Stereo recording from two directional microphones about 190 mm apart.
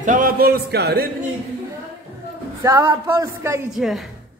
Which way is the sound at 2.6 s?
20° right (ahead or behind).